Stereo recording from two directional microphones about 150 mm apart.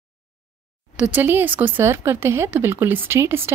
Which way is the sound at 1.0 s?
10° right (ahead or behind).